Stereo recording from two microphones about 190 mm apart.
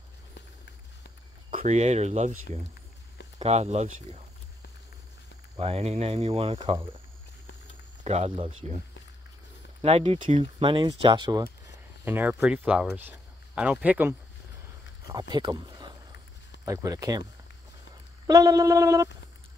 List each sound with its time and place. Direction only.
1.6 s speech: 35° right (ahead or behind)
3.3 s speech: 35° right (ahead or behind)
5.6 s speech: 30° right (ahead or behind)
8.0 s speech: 35° right (ahead or behind)
9.8 s speech: 30° right (ahead or behind); by 13.1 s 10° right (ahead or behind)
13.6 s a sound: 5° right (ahead or behind)
15.0 s speech: 20° right (ahead or behind)
16.6 s a sound: 20° right (ahead or behind)
18.2 s a sound: 20° right (ahead or behind)